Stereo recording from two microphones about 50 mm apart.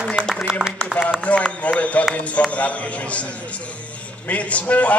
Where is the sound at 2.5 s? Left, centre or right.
Left.